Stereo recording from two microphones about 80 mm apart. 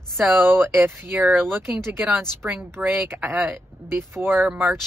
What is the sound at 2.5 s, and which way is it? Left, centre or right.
Speech, right.